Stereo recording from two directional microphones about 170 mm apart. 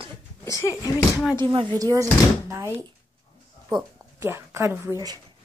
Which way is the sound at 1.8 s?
20° right (ahead or behind).